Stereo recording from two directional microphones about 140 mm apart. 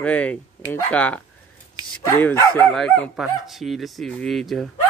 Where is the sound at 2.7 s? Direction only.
5° left (ahead or behind).